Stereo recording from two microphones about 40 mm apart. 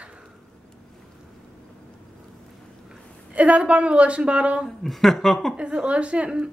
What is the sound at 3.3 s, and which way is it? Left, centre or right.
A woman's voice, right.